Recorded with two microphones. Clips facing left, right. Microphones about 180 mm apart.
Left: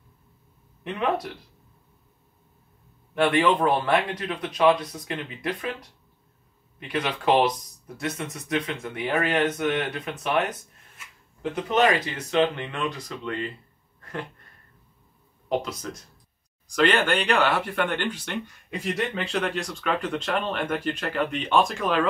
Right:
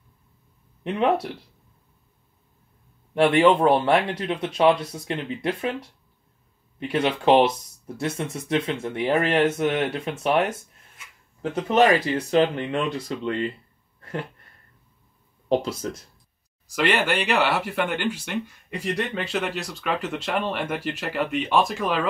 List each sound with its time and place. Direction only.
0.8 s speech: 30° right (ahead or behind)
3.2 s speech: 25° right (ahead or behind)
6.9 s speech: 30° right (ahead or behind)
12.3 s speech: 35° right (ahead or behind)
15.4 s speech: 30° right (ahead or behind)
16.6 s speech: 5° right (ahead or behind)